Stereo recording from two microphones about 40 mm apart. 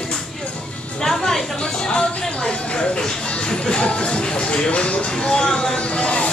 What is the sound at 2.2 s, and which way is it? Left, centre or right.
Music, left.